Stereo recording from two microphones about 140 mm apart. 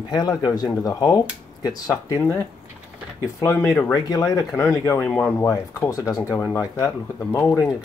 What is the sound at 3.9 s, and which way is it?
Speech, 25° left (ahead or behind).